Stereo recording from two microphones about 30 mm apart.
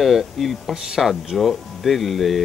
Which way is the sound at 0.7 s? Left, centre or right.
Right.